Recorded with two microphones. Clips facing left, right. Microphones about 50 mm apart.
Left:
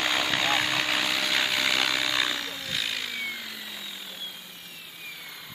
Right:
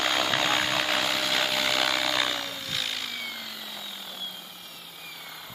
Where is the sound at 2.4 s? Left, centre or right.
Centre.